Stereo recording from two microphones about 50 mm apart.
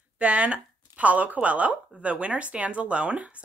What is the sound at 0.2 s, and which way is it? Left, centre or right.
Speech, right.